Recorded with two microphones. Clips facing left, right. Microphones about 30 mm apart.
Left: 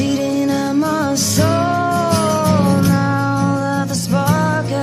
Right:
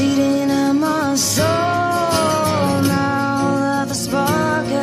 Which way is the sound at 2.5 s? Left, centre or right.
Right.